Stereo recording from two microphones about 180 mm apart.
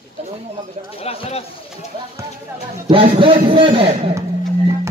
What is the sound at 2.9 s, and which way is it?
A man's voice, 30° right (ahead or behind).